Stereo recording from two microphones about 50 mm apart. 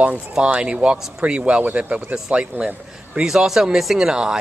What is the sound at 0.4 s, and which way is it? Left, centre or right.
Speech, right.